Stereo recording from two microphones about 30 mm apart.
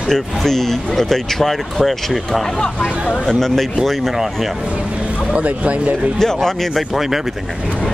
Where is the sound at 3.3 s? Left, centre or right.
Centre.